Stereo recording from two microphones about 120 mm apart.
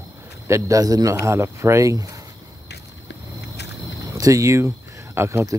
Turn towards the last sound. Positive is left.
turn(degrees=-20)  # may be behind; listen again after turning